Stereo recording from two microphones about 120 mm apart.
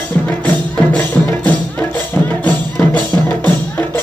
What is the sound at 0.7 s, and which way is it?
Music, 10° left (ahead or behind).